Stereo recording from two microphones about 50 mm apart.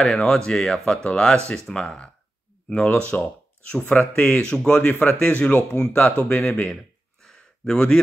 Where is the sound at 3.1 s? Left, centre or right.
Left.